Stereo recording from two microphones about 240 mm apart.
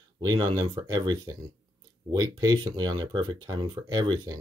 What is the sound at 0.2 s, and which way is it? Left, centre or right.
Speech, centre.